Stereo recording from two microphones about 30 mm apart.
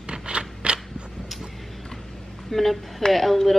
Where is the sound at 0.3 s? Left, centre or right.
Right.